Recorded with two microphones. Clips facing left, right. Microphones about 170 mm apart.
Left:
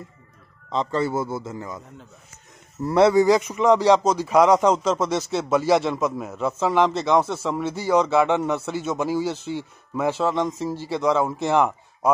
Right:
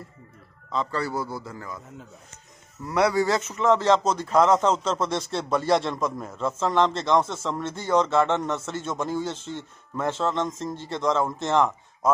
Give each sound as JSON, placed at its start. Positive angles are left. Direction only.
{"t": 0.7, "sound": "a man's voice", "side_deg": 25}
{"t": 2.8, "sound": "speech", "side_deg": 30}